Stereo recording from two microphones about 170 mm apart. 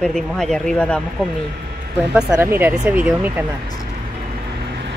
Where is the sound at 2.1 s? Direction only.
10° right (ahead or behind).